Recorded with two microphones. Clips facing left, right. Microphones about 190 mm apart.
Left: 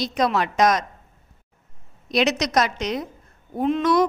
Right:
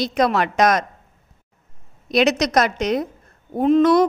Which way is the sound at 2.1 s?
50° right (ahead or behind).